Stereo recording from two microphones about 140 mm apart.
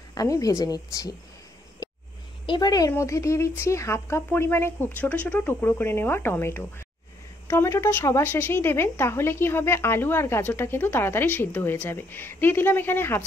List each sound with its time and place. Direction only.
0.1 s a woman's voice: 25° left (ahead or behind)
1.8 s a sound: 30° left (ahead or behind)
2.4 s a woman's voice: 30° left (ahead or behind); by 13.2 s 15° left (ahead or behind)